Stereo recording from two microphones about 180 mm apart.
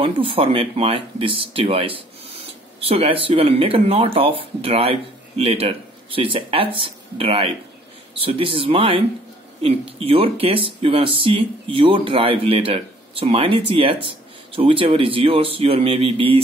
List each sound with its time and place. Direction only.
0.0 s speech: 30° right (ahead or behind)